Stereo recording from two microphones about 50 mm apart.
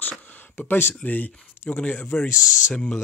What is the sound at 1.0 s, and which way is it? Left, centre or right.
Speech, left.